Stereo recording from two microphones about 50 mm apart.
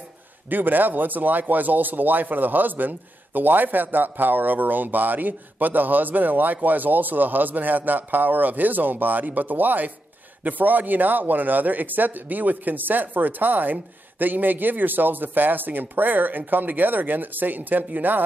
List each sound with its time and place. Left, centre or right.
0.5 s speech: right